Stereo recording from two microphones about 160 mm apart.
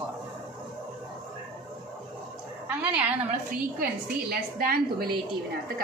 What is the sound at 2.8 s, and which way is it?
Speech, 5° right (ahead or behind).